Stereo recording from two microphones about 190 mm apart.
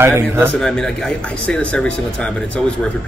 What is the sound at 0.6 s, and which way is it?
Speech, 5° left (ahead or behind).